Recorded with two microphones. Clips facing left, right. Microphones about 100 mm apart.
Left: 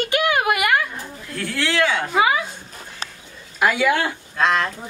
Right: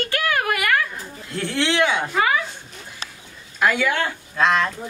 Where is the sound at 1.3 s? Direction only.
25° right (ahead or behind).